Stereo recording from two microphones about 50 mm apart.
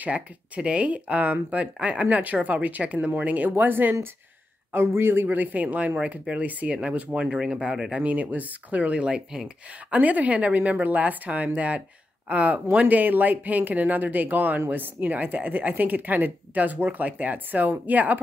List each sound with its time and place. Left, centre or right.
0.6 s speech: right
5.9 s speech: right
8.0 s speech: right
9.8 s speech: right
12.8 s speech: right